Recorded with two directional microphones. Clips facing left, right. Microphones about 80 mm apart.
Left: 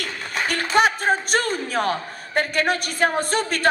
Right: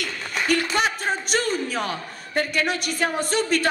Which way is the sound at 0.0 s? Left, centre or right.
Left.